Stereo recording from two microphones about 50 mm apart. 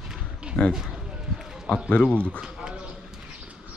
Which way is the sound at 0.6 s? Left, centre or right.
Centre.